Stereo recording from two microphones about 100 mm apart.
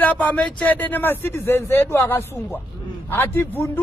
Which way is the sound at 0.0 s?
10° left (ahead or behind).